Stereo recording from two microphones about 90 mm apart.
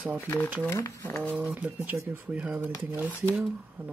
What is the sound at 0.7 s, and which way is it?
Speech, 35° left (ahead or behind).